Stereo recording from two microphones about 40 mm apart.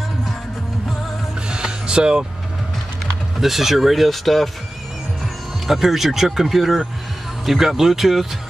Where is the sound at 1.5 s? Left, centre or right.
Right.